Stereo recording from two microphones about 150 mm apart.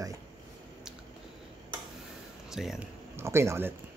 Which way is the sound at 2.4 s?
5° right (ahead or behind).